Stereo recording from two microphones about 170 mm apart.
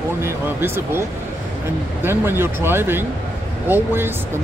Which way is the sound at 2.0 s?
15° right (ahead or behind).